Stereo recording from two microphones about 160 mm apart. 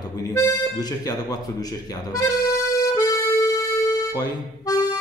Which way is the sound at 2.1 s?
20° left (ahead or behind).